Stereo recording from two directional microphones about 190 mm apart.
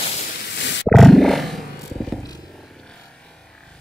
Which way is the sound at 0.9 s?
Centre (ahead or behind).